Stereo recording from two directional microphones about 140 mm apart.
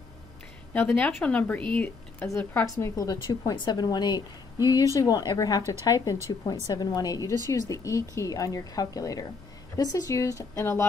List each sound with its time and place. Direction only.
0.7 s speech: 10° left (ahead or behind)
2.6 s speech: 25° left (ahead or behind)